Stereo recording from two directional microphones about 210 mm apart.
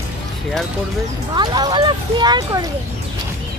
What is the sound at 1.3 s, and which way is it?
Speech, 20° right (ahead or behind).